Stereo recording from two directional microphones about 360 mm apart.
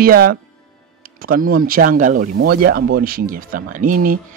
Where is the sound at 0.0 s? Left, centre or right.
Right.